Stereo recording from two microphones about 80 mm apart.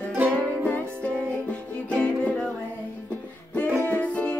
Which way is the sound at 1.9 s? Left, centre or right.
Centre.